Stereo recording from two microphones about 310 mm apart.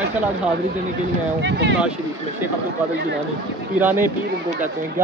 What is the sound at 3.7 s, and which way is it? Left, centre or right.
Speech, centre.